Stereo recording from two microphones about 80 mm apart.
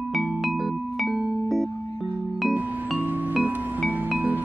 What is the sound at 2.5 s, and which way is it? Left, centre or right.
Music, right.